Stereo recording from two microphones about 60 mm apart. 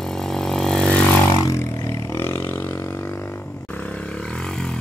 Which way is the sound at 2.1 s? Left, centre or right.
Left.